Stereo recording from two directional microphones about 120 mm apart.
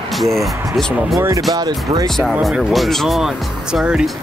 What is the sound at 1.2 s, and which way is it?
Speech, 25° right (ahead or behind).